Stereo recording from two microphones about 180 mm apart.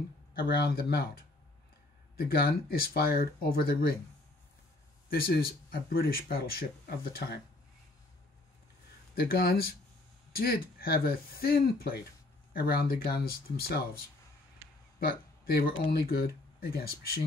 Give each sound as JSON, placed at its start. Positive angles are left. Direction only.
{"t": 0.3, "sound": "speech", "side_deg": 60}
{"t": 2.1, "sound": "speech", "side_deg": 60}
{"t": 5.1, "sound": "speech", "side_deg": 60}
{"t": 9.1, "sound": "speech", "side_deg": 60}
{"t": 15.0, "sound": "speech", "side_deg": 55}